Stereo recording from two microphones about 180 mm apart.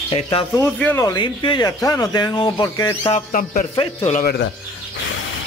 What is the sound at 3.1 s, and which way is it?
Speech, 45° left (ahead or behind).